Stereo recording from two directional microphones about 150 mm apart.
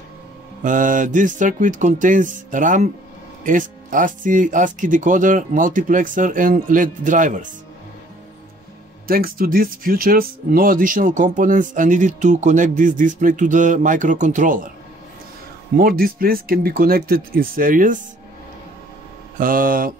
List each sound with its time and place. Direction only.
0.7 s speech: 60° right (ahead or behind)
9.0 s speech: 75° right (ahead or behind); by 14.7 s 60° right (ahead or behind)
15.7 s speech: 75° right (ahead or behind)
19.3 s speech: 70° right (ahead or behind)